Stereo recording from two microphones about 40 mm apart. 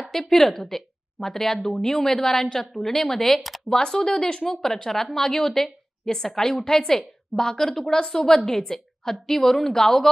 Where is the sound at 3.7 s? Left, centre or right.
Centre.